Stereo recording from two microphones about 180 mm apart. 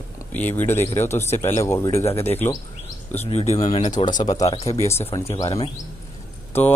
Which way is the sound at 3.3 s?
40° left (ahead or behind).